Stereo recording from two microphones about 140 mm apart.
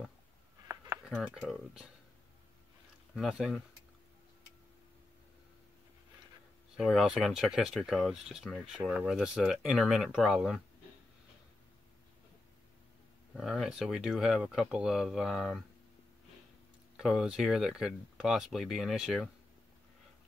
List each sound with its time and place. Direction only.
1.0 s speech: 5° right (ahead or behind)
3.2 s speech: 5° right (ahead or behind)
6.8 s speech: centre (ahead or behind)
13.3 s speech: 5° right (ahead or behind)
16.9 s speech: centre (ahead or behind)